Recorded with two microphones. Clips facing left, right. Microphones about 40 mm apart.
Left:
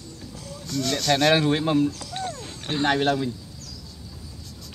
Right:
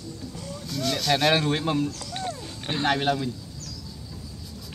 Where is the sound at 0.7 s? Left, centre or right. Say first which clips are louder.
Left 2 dB; centre.